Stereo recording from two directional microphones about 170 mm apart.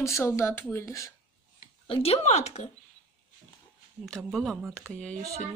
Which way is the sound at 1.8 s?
35° left (ahead or behind).